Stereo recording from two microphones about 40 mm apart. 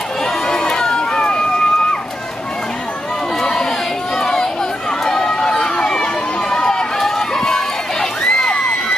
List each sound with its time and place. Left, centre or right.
0.5 s run: centre
3.3 s chatter: centre
4.2 s a sound: centre
5.0 s run: centre